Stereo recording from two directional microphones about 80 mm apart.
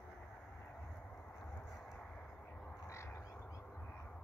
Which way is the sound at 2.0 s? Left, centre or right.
Centre.